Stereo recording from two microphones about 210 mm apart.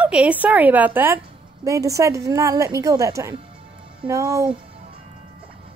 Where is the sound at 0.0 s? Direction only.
5° right (ahead or behind).